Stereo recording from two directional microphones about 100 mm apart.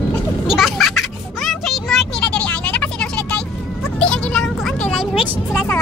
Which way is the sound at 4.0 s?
10° left (ahead or behind).